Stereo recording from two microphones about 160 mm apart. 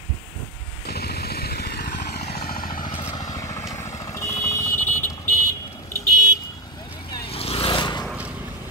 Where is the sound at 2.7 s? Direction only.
30° left (ahead or behind).